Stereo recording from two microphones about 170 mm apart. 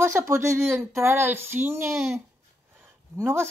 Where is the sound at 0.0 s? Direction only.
15° right (ahead or behind).